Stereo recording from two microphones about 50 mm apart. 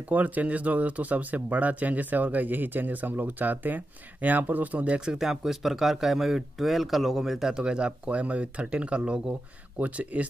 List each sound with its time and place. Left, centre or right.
0.1 s speech: right
5.0 s speech: centre; by 10.2 s right